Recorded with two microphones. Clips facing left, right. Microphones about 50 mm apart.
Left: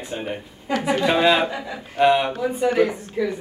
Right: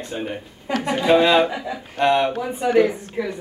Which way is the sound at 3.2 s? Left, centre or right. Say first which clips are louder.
Left 2 dB; centre.